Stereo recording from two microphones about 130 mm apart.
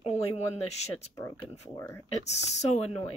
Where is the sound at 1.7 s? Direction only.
20° left (ahead or behind).